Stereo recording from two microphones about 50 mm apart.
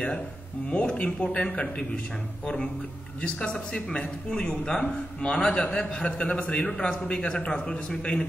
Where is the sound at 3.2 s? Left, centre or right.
Centre.